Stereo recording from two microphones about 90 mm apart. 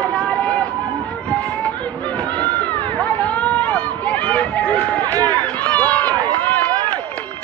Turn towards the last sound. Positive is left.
turn(degrees=15)  # may be behind; listen again after turning